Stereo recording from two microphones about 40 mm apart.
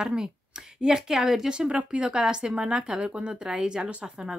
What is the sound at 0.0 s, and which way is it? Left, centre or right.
Speech, centre.